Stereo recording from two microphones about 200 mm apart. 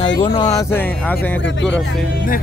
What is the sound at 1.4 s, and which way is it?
Speech, 65° left (ahead or behind).